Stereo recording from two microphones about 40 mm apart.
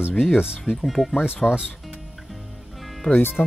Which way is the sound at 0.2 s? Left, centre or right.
Centre.